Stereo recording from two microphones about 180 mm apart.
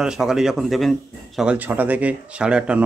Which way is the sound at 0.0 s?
5° right (ahead or behind).